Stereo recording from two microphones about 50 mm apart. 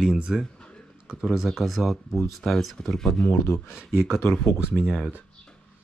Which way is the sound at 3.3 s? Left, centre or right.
Left.